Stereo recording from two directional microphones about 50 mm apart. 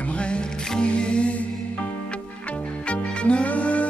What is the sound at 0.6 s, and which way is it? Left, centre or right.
Music, centre.